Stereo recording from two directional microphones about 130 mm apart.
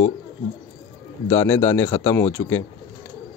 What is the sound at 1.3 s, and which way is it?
Speech, 20° left (ahead or behind).